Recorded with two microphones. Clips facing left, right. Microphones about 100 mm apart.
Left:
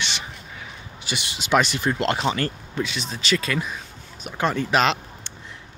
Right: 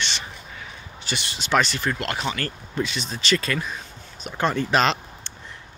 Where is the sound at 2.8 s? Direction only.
5° left (ahead or behind).